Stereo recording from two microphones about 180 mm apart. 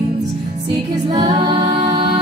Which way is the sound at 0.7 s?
30° right (ahead or behind).